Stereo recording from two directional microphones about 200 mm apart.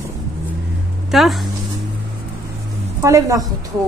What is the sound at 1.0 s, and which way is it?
Speech, centre (ahead or behind).